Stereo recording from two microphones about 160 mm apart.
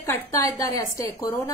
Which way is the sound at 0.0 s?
20° left (ahead or behind).